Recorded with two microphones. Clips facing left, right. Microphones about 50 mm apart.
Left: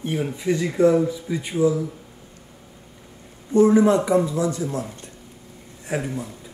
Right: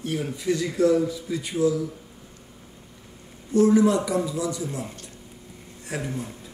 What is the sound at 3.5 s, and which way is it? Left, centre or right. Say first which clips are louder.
Speech: left 3 dB; left.